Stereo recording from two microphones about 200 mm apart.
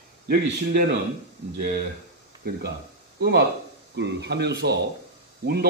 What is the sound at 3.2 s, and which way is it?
Speech, 55° right (ahead or behind).